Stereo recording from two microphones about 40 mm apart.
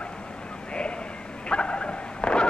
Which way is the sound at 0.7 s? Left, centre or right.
Left.